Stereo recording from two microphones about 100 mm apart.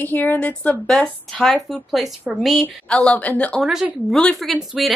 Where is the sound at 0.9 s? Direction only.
5° left (ahead or behind).